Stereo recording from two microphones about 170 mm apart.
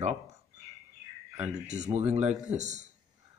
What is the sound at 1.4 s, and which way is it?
Speech, 45° right (ahead or behind).